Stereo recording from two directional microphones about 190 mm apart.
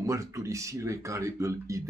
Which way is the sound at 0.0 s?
15° right (ahead or behind).